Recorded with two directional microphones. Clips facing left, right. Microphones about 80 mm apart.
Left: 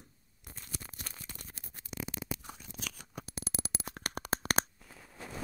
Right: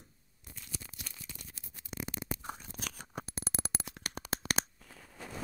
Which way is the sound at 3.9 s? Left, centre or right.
Left.